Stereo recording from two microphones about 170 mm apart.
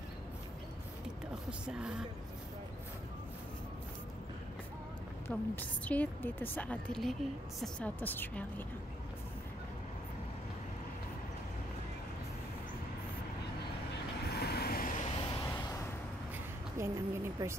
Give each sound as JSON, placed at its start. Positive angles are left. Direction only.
{"t": 1.7, "sound": "speech", "side_deg": -5}
{"t": 5.3, "sound": "a woman's voice", "side_deg": 10}
{"t": 14.3, "sound": "vehicle", "side_deg": 70}
{"t": 15.4, "sound": "vehicle", "side_deg": 15}
{"t": 16.7, "sound": "a sound", "side_deg": -15}